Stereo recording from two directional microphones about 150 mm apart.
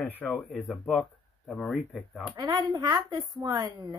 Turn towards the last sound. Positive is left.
turn(degrees=-25)  # may be behind; listen again after turning